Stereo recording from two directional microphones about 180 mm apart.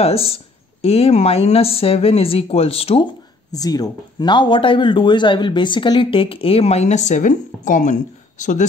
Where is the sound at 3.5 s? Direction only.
20° left (ahead or behind).